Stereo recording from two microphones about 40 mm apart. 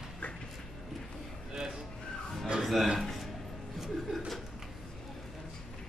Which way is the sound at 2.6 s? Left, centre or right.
Centre.